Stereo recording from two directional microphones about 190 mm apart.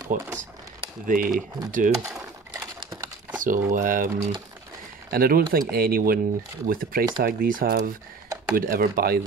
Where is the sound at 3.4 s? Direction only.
45° right (ahead or behind).